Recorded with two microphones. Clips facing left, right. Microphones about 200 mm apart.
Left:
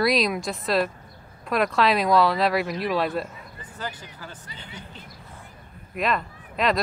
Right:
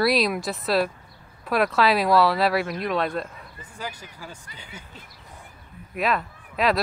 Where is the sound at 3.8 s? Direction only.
10° right (ahead or behind).